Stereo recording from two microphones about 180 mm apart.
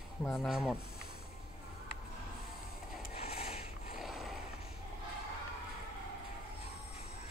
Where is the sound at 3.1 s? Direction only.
35° left (ahead or behind).